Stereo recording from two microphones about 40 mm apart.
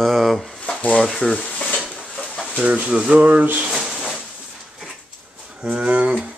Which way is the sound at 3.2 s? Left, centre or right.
Right.